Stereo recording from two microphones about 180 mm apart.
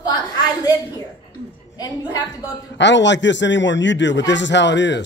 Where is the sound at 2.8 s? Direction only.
80° left.